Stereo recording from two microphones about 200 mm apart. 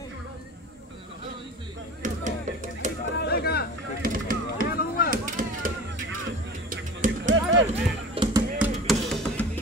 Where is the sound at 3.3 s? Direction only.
50° left (ahead or behind).